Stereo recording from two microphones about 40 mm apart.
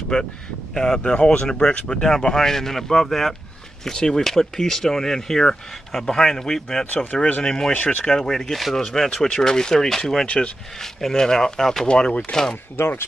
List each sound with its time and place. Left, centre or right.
0.1 s speech: left
7.0 s speech: left
7.4 s speech: centre
7.7 s speech: left
8.2 s speech: centre
10.2 s speech: left
10.8 s speech: centre
12.7 s speech: left